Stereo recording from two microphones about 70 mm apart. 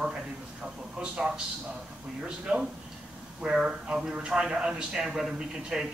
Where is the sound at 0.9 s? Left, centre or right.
Centre.